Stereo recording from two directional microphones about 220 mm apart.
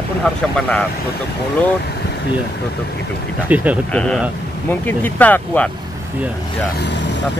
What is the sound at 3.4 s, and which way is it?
Speech, 5° right (ahead or behind).